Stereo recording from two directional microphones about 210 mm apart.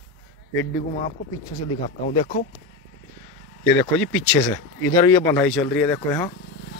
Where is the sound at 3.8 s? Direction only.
5° left (ahead or behind).